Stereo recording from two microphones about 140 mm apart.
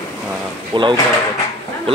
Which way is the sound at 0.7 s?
35° right (ahead or behind).